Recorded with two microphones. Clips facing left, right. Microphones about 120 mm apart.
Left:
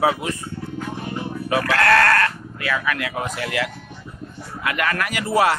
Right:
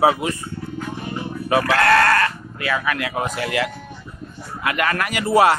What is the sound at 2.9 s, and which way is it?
Speech, 15° right (ahead or behind).